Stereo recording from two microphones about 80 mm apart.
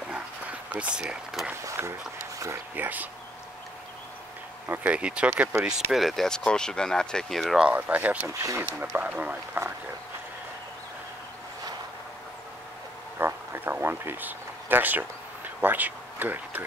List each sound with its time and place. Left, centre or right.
0.1 s dog: centre
1.7 s a sound: right
2.7 s speech: right
4.8 s speech: centre
7.6 s speech: right
8.3 s speech: right
8.9 s speech: centre
13.2 s a sound: right